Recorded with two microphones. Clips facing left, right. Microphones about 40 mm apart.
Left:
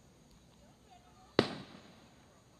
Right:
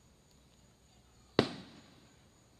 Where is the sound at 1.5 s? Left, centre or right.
Centre.